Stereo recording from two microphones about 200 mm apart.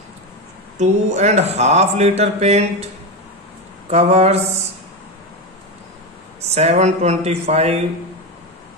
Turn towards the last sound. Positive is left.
turn(degrees=-30)  # may be behind; listen again after turning